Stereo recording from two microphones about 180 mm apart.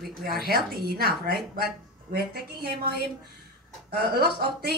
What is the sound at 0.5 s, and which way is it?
A woman's voice, 60° right (ahead or behind).